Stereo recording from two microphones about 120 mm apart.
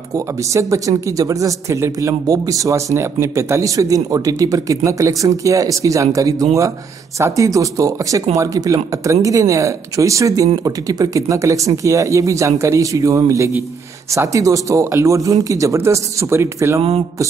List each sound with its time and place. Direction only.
0.1 s speech: 25° right (ahead or behind)
7.2 s speech: 25° right (ahead or behind)